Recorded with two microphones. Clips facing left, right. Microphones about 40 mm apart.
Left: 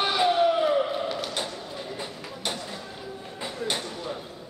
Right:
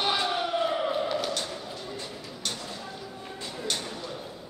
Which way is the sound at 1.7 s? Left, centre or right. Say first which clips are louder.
Left 3 dB; centre.